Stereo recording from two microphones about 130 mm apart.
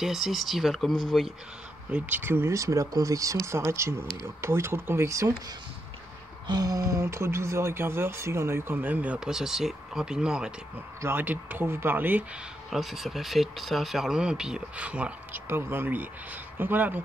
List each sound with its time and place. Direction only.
0.0 s speech: 5° right (ahead or behind)
1.9 s speech: 10° right (ahead or behind)
6.4 s speech: 30° right (ahead or behind); by 10.5 s 5° right (ahead or behind)
11.0 s speech: 15° right (ahead or behind)
12.6 s speech: centre (ahead or behind)